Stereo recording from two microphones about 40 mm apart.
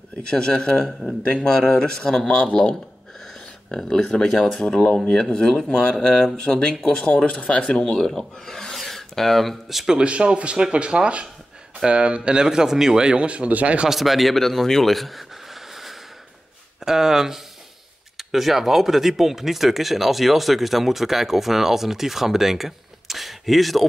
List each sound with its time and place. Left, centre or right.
0.2 s a man's voice: left
3.7 s a man's voice: centre
7.9 s speech: centre
10.0 s a man's voice: right
13.8 s speech: centre
15.7 s snort: centre
16.8 s speech: centre